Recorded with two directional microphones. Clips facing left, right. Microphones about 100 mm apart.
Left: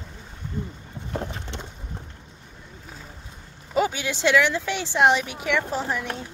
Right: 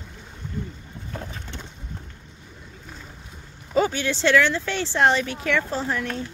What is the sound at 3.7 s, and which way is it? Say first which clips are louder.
Speech: right 2 dB; 10° left (ahead or behind).